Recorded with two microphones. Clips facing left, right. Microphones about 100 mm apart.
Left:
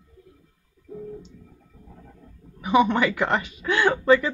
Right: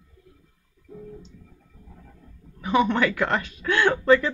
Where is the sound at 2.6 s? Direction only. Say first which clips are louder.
Left 2 dB; 15° left (ahead or behind).